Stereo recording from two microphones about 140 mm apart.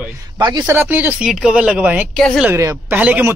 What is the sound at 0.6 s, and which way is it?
Speech, 15° right (ahead or behind).